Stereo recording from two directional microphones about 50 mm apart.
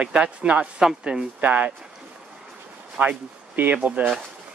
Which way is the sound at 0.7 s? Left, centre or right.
Centre.